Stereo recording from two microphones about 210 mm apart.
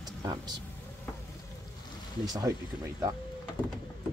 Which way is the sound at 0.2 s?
20° right (ahead or behind).